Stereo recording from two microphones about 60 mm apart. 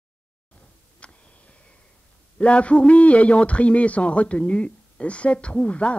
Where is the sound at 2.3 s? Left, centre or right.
Centre.